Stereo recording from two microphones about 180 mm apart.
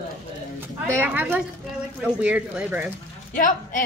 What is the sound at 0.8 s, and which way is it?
A woman's voice, 15° right (ahead or behind).